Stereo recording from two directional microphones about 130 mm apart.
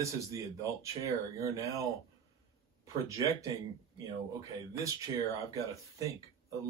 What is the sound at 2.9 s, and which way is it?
Speech, 25° right (ahead or behind).